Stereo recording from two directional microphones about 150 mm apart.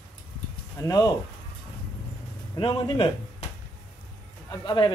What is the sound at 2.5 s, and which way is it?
Speech, 35° left (ahead or behind).